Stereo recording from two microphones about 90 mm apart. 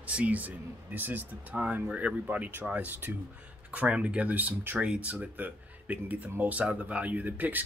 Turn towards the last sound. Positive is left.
turn(degrees=-20)  # may be behind; listen again after turning